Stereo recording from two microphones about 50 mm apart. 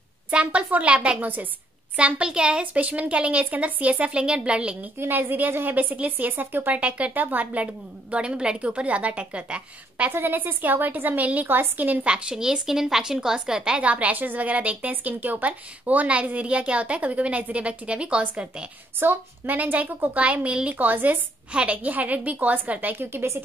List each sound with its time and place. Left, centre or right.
0.3 s a woman's voice: right
1.2 s a woman's voice: right
2.0 s a woman's voice: right
2.6 s a woman's voice: right
4.9 s a woman's voice: right
7.6 s a woman's voice: right
10.1 s a woman's voice: right
11.4 s a woman's voice: right
12.1 s a woman's voice: centre
13.8 s a woman's voice: right
18.9 s a woman's voice: right
21.5 s a woman's voice: right